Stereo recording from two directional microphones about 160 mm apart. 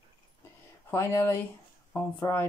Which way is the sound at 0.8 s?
15° left (ahead or behind).